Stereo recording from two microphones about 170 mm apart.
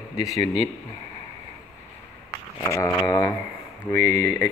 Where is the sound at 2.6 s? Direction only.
20° left (ahead or behind).